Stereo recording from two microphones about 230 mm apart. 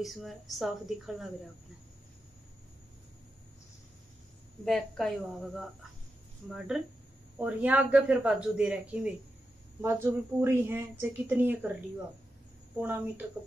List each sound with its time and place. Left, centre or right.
0.0 s speech: centre
4.6 s speech: centre
6.7 s a woman's voice: centre
12.8 s a woman's voice: centre